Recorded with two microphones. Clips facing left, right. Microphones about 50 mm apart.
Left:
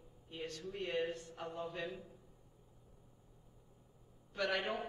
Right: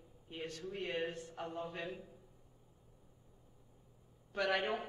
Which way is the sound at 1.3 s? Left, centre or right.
Right.